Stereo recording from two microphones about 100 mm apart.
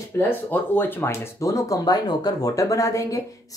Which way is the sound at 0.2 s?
20° left (ahead or behind).